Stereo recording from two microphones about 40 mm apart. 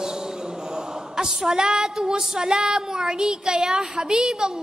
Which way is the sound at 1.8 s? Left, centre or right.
Centre.